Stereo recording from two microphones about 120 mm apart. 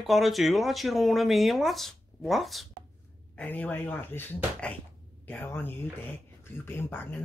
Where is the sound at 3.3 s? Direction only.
15° left (ahead or behind).